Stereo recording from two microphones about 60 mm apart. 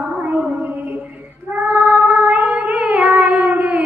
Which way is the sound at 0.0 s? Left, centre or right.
Right.